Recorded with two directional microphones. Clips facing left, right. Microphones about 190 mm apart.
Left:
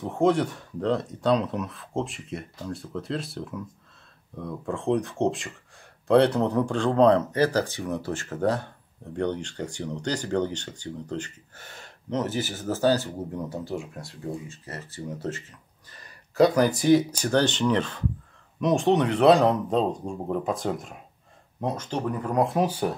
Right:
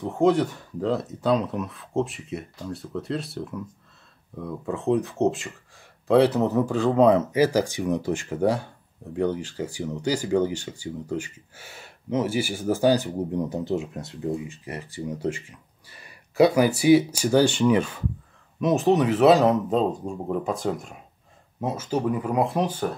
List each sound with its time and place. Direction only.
0.0 s speech: centre (ahead or behind)